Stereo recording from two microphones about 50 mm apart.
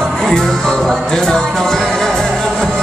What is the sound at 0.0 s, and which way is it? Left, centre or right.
Music, centre.